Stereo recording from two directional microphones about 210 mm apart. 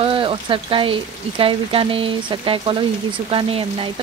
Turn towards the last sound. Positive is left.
turn(degrees=-25)  # may be behind; listen again after turning